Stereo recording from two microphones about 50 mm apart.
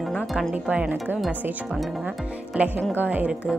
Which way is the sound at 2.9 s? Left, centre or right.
Right.